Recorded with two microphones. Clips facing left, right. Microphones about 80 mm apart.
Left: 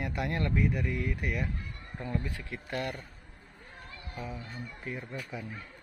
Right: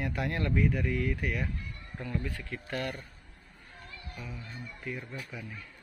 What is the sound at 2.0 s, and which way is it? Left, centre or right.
Speech, centre.